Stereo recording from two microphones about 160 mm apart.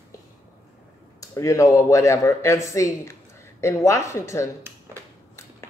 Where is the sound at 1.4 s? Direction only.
20° left (ahead or behind).